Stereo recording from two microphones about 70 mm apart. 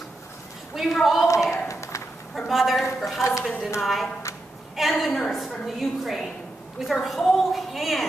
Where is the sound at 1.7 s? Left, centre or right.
Left.